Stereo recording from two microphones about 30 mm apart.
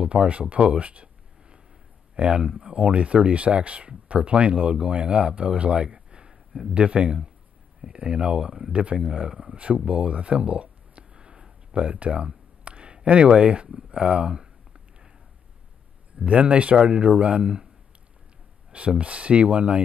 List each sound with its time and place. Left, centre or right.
0.0 s speech: right
2.1 s speech: right
5.9 s a sound: right
6.7 s speech: right
8.4 s speech: right
9.8 s speech: right
11.1 s a sound: right
11.7 s speech: right
12.6 s a sound: right
13.0 s speech: right
13.8 s a sound: right
16.3 s speech: right
18.7 s speech: right